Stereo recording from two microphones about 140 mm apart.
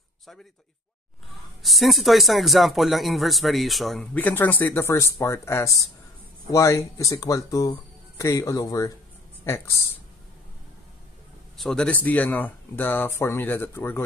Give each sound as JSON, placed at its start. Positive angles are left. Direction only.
{"t": 1.6, "sound": "speech", "side_deg": 0}
{"t": 11.5, "sound": "speech", "side_deg": 5}